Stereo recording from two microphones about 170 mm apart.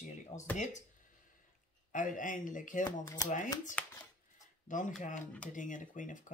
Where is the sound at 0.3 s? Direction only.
45° left (ahead or behind).